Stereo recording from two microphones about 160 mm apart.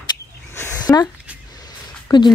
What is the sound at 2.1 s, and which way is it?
Speech, 30° left (ahead or behind).